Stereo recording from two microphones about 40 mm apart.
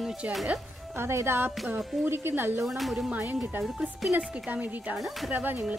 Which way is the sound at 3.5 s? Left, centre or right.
Right.